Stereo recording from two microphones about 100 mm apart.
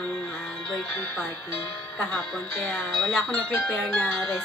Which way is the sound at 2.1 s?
5° left (ahead or behind).